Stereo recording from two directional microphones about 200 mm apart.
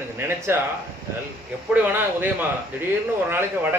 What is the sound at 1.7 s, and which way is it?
Speech, 10° right (ahead or behind).